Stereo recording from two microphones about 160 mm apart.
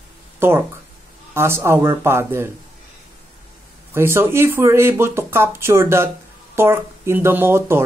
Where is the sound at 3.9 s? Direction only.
15° right (ahead or behind).